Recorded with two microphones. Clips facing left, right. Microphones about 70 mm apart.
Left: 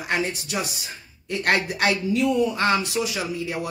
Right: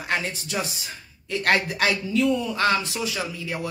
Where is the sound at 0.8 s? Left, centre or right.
Centre.